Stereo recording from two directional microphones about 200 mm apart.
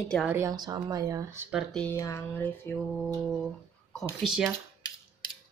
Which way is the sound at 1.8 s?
15° left (ahead or behind).